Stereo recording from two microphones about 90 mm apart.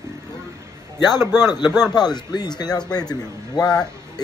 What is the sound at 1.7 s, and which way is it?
Speech, 10° left (ahead or behind).